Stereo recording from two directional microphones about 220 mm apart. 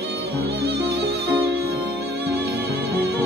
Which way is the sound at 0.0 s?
50° right (ahead or behind).